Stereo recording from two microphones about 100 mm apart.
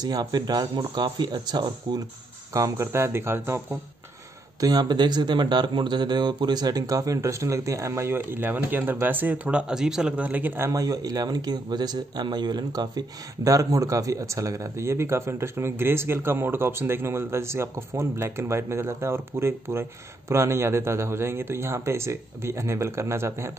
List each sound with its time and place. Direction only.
0.0 s speech: 40° right (ahead or behind)
2.5 s speech: 30° right (ahead or behind)
4.6 s speech: 40° right (ahead or behind); by 10.7 s 20° right (ahead or behind)
10.7 s speech: 35° right (ahead or behind)